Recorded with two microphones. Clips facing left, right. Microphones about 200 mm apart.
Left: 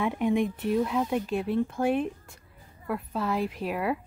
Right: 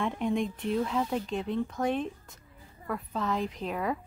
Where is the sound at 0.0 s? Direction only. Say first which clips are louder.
Left 4 dB; 10° left (ahead or behind).